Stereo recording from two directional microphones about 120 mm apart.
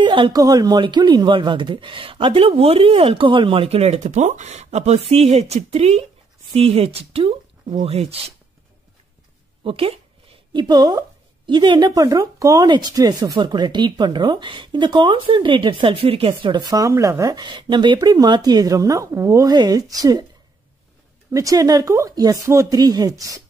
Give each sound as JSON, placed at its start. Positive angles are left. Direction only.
{"t": 0.0, "sound": "a sound", "side_deg": -45}
{"t": 0.3, "sound": "speech", "side_deg": -30}
{"t": 9.6, "sound": "speech", "side_deg": -50}
{"t": 21.3, "sound": "speech", "side_deg": -30}